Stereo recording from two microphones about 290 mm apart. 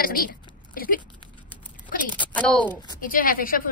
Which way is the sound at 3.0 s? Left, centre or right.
Left.